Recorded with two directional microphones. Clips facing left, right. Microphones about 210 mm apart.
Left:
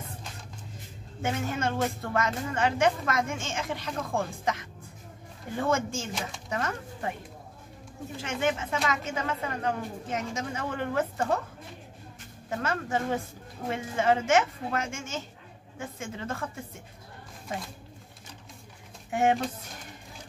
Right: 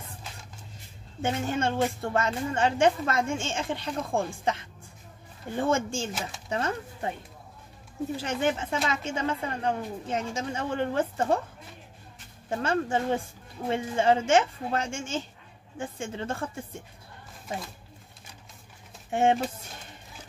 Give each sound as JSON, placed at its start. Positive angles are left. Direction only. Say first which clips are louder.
{"t": 1.2, "sound": "a woman's voice", "louder": "right 2 dB", "side_deg": -30}
{"t": 8.2, "sound": "a woman's voice", "louder": "even", "side_deg": -35}
{"t": 12.4, "sound": "a woman's voice", "louder": "right 4 dB", "side_deg": -30}
{"t": 19.0, "sound": "speech", "louder": "right 1 dB", "side_deg": -25}